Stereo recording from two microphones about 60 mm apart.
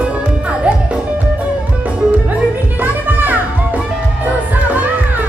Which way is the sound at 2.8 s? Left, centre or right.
Right.